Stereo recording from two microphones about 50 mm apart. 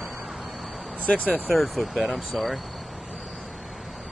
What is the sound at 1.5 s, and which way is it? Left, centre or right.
Cricket, centre.